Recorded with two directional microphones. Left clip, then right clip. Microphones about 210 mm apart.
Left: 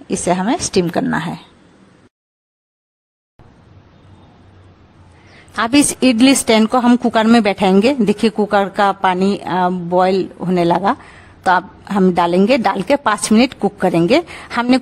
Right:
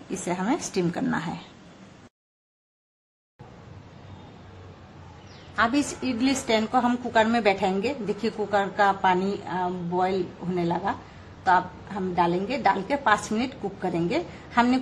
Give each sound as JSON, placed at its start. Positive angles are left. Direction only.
{"t": 0.1, "sound": "a woman's voice", "side_deg": 35}
{"t": 5.6, "sound": "a woman's voice", "side_deg": 50}